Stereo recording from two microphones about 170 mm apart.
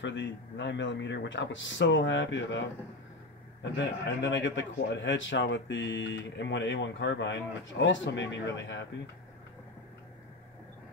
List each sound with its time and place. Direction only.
0.0 s speech: 90° left
3.7 s speech: 90° left